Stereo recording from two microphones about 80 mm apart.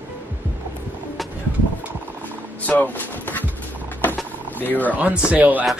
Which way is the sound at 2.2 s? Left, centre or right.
Centre.